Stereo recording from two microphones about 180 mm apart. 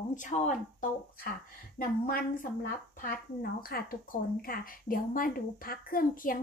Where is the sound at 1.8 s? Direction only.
55° left (ahead or behind).